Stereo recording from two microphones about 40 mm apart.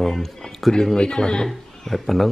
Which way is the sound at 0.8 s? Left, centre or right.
Centre.